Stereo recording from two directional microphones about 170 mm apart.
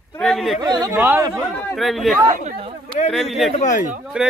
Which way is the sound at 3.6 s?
50° left (ahead or behind).